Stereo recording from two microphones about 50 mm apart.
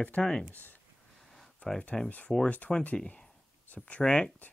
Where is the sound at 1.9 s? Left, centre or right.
Centre.